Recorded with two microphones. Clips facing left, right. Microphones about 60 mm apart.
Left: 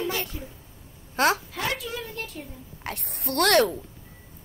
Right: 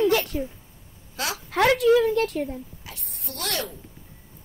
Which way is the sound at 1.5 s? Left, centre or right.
Right.